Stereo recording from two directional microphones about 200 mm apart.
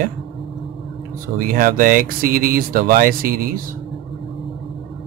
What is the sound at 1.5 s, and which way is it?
Speech, 45° right (ahead or behind).